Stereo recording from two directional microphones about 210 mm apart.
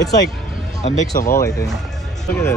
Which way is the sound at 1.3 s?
15° left (ahead or behind).